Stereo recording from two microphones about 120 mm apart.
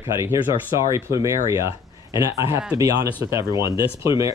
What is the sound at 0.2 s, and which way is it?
Speech, 25° right (ahead or behind).